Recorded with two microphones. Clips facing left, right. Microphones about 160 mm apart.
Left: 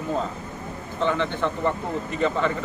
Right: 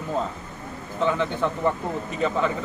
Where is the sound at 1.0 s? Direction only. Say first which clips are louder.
Right 1 dB; 5° right (ahead or behind).